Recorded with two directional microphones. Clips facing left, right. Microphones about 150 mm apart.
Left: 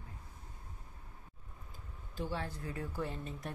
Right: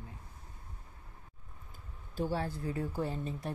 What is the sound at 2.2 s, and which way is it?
Speech, 35° right (ahead or behind).